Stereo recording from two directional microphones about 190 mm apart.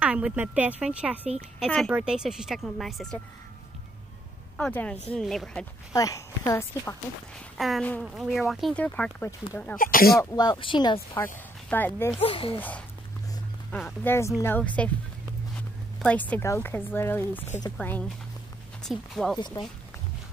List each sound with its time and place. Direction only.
0.0 s speech: 5° right (ahead or behind)
4.6 s speech: 5° left (ahead or behind)
5.9 s speech: 15° left (ahead or behind)
7.5 s speech: centre (ahead or behind)
9.8 s speech: 50° left (ahead or behind)
10.3 s speech: 20° left (ahead or behind)
11.7 s speech: 10° left (ahead or behind)
12.2 s speech: 30° left (ahead or behind)
12.5 s speech: 10° left (ahead or behind)
16.0 s speech: 5° left (ahead or behind)
19.6 s speech: 25° left (ahead or behind)